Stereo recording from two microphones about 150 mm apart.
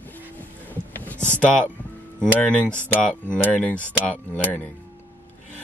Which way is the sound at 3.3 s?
10° left (ahead or behind).